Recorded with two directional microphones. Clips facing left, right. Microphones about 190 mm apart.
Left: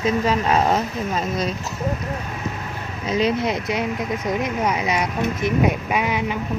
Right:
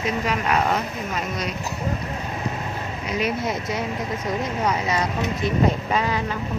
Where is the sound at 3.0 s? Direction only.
20° left (ahead or behind).